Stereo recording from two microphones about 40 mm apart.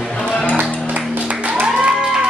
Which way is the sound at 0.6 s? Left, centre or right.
Right.